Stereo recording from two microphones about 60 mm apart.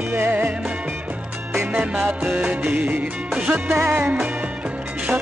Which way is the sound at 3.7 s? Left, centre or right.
Right.